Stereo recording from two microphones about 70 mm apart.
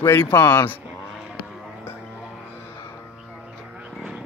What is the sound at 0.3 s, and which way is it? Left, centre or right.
Speech, left.